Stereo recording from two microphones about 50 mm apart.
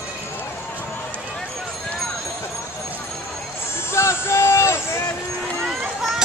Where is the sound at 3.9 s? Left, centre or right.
Left.